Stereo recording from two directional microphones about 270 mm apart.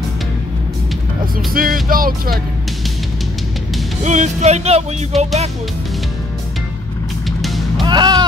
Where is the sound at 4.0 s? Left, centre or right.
Right.